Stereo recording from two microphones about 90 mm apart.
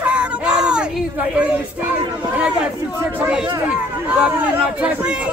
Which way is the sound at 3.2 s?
10° right (ahead or behind).